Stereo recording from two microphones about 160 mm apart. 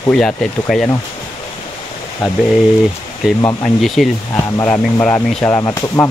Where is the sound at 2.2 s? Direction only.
5° right (ahead or behind).